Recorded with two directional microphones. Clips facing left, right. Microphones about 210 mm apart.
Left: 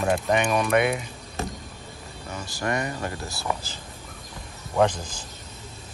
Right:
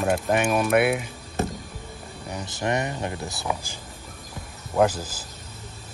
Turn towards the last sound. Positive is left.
turn(degrees=-5)  # may be behind; listen again after turning